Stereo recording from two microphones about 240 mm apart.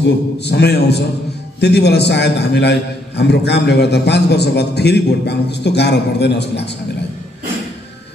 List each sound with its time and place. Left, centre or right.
0.0 s a man's voice: left